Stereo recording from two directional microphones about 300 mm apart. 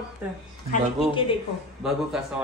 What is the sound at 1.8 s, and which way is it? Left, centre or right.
Speech, centre.